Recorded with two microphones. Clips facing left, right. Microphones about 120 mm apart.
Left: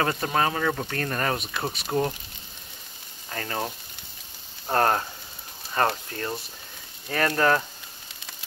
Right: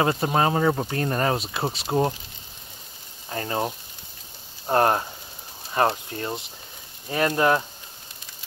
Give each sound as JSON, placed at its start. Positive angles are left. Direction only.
{"t": 0.0, "sound": "speech", "side_deg": -25}
{"t": 3.3, "sound": "speech", "side_deg": -25}